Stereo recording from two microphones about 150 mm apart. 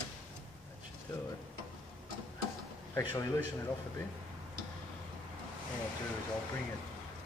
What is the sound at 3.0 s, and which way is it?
Speech, 20° left (ahead or behind).